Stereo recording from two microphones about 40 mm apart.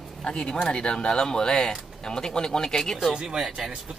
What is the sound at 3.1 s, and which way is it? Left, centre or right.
Speech, centre.